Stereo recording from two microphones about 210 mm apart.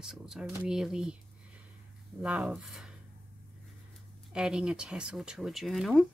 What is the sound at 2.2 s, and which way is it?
Speech, 5° right (ahead or behind).